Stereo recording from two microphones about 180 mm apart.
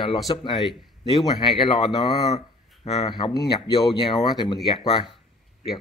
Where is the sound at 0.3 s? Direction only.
25° left (ahead or behind).